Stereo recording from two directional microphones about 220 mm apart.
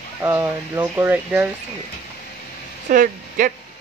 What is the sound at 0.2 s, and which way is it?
Speech, 10° right (ahead or behind).